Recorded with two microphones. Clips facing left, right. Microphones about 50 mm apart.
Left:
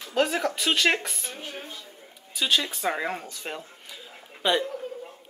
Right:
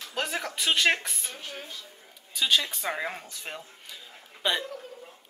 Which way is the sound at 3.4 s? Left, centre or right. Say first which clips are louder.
Left 3 dB; centre.